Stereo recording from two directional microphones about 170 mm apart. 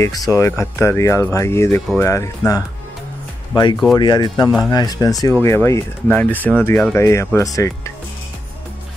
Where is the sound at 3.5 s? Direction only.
25° left (ahead or behind).